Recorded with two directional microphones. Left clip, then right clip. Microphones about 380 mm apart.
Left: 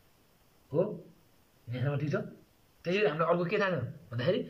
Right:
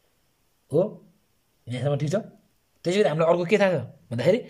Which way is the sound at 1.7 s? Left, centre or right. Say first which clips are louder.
Right 8 dB; right.